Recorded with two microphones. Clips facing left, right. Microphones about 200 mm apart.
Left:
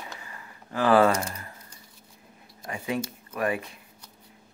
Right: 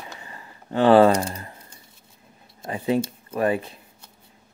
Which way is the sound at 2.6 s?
30° right (ahead or behind).